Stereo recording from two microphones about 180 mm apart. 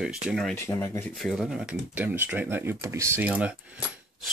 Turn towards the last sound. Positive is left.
turn(degrees=-5)  # may be behind; listen again after turning